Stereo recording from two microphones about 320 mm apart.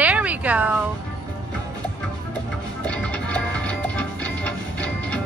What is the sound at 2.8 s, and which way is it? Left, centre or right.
Music, centre.